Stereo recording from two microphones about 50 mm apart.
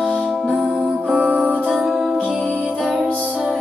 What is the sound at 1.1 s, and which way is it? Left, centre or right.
Music, right.